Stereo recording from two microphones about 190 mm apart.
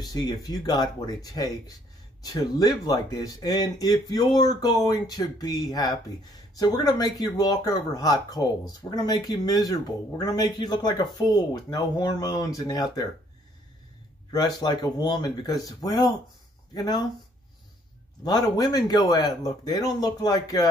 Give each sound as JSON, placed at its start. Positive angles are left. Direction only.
{"t": 0.1, "sound": "speech", "side_deg": 20}
{"t": 14.3, "sound": "speech", "side_deg": 20}
{"t": 18.2, "sound": "speech", "side_deg": 20}